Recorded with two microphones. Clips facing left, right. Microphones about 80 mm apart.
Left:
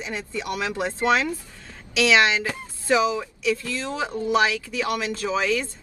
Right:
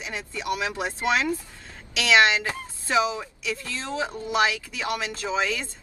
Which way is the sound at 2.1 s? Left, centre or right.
Right.